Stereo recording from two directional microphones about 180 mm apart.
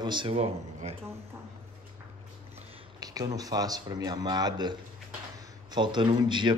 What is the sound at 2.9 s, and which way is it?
Speech, 20° right (ahead or behind).